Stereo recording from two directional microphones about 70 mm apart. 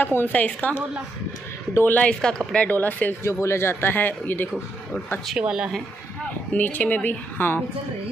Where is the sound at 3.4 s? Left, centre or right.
Left.